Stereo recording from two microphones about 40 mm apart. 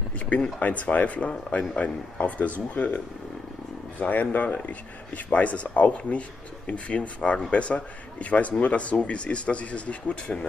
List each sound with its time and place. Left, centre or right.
0.6 s speech: left
4.0 s speech: left